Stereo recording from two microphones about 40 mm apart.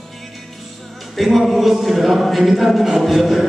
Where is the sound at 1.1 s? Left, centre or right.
Centre.